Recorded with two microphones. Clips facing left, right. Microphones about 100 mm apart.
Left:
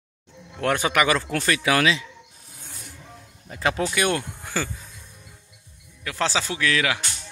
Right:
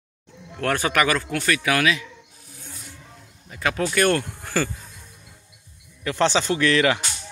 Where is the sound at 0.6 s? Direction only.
20° left (ahead or behind).